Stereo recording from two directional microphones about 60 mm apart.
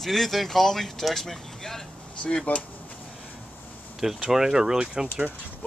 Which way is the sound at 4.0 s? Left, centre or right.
Centre.